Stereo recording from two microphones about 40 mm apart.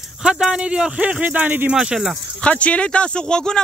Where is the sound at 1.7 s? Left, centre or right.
Right.